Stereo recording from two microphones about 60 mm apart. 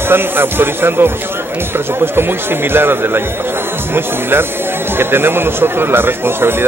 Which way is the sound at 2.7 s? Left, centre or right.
Right.